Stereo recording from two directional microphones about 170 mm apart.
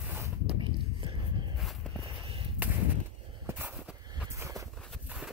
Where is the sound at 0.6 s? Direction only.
30° right (ahead or behind).